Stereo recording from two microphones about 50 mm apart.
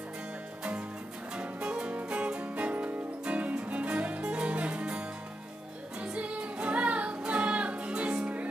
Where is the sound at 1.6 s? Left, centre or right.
Right.